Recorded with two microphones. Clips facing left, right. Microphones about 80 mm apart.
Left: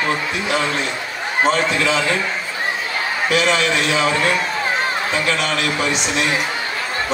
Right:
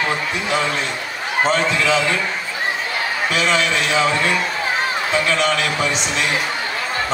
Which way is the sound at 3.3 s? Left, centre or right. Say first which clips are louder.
Left 1 dB; left.